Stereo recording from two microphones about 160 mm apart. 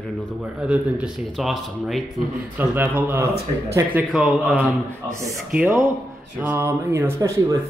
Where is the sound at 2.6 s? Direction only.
10° right (ahead or behind).